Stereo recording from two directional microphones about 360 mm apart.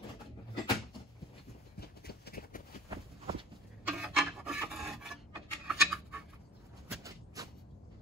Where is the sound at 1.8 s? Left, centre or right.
Left.